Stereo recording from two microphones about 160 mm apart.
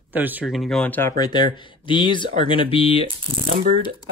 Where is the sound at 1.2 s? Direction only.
25° left (ahead or behind).